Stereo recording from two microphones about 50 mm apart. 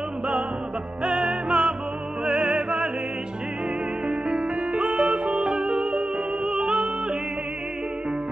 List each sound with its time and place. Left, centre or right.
1.0 s music: centre
4.1 s music: centre